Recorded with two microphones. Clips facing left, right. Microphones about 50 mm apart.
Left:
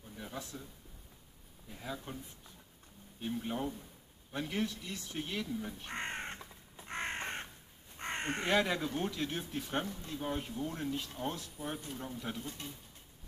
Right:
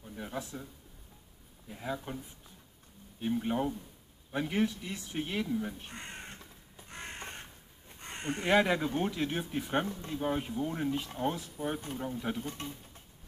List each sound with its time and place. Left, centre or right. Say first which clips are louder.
0.0 s a man's voice: right 5 dB; centre
1.7 s speech: right 5 dB; centre
3.2 s speech: right 6 dB; centre
5.9 s crow: left 5 dB; left
8.5 s speech: right 5 dB; centre
12.4 s speech: right 5 dB; right